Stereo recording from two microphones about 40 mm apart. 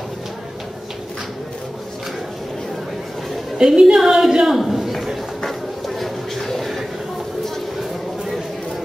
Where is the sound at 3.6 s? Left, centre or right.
Centre.